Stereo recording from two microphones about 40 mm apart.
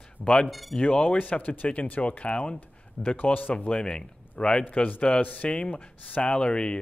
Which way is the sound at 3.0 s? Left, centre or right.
Left.